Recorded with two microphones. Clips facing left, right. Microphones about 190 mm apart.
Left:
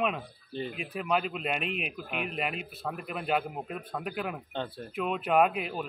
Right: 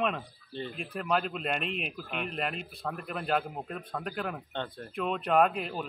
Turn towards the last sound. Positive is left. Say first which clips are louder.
# even
turn(degrees=5)  # may be behind; listen again after turning